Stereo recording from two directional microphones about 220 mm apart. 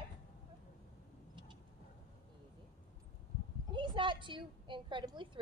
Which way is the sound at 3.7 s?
20° right (ahead or behind).